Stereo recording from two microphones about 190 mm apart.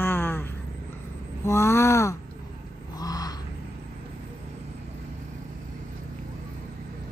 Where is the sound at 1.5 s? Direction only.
15° left (ahead or behind).